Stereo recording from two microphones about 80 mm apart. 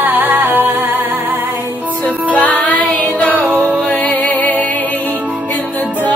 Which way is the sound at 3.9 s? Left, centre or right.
Centre.